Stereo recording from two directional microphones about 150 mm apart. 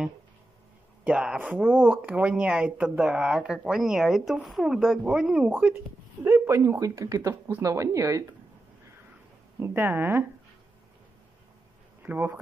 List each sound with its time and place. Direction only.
1.0 s speech: 10° right (ahead or behind)
9.6 s speech: 15° right (ahead or behind)
12.0 s speech: 10° right (ahead or behind)